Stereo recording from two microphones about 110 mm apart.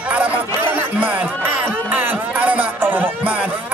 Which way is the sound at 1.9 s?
15° right (ahead or behind).